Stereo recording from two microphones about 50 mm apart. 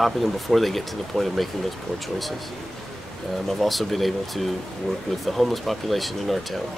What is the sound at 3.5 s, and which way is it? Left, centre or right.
Speech, centre.